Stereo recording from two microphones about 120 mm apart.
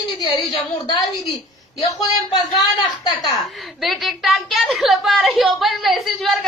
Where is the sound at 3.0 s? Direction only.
30° left (ahead or behind).